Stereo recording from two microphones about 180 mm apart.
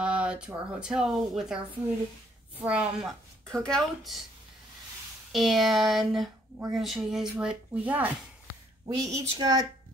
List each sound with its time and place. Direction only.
0.0 s a sound: 5° right (ahead or behind)
0.7 s speech: 5° right (ahead or behind)
2.6 s speech: 5° right (ahead or behind)
5.3 s speech: centre (ahead or behind); by 9.7 s 20° right (ahead or behind)